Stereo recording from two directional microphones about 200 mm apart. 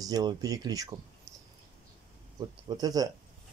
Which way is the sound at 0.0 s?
20° right (ahead or behind).